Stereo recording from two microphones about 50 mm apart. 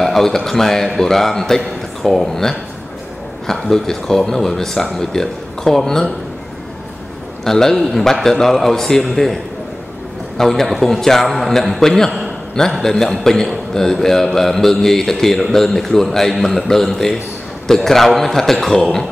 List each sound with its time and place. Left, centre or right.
0.0 s a sound: centre
0.4 s speech: centre
7.4 s speech: centre